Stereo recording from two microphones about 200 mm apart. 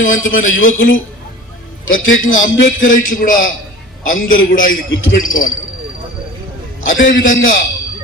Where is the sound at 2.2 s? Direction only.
70° left (ahead or behind).